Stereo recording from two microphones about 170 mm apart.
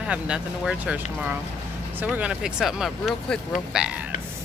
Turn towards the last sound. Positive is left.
turn(degrees=-5)  # may be behind; listen again after turning